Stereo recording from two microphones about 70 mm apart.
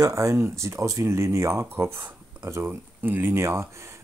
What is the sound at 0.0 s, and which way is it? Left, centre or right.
Speech, right.